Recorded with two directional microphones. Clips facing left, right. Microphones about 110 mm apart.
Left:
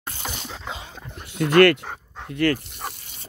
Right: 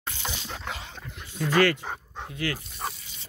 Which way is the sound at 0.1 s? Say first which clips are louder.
Left 2 dB; 50° left (ahead or behind).